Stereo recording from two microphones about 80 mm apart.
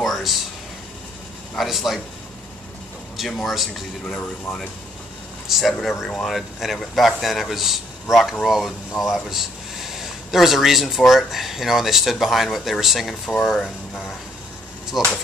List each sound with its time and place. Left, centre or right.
0.0 s a sound: centre
1.6 s a man's voice: centre
3.2 s a man's voice: centre
4.1 s speech: left
5.5 s a man's voice: centre